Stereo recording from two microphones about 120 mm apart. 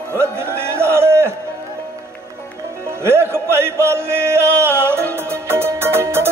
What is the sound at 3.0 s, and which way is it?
Music, 20° right (ahead or behind).